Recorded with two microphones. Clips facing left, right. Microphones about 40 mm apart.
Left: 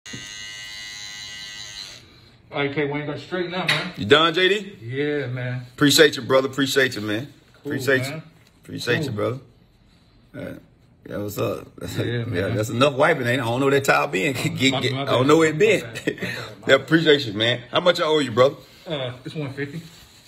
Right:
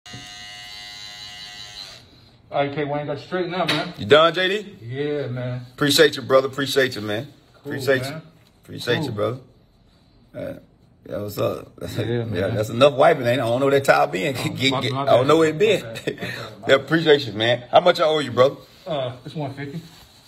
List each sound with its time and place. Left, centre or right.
0.0 s electric shaver: left
2.5 s a man's voice: left